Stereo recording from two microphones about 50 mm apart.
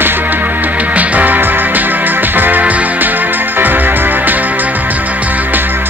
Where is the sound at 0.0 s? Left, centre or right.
Right.